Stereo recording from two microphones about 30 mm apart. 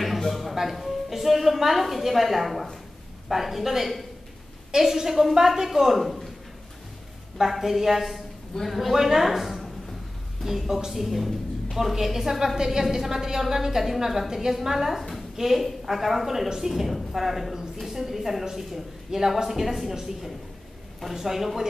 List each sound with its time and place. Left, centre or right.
0.2 s a woman's voice: centre
5.9 s speech: centre
7.5 s a woman's voice: centre
18.4 s a woman's voice: centre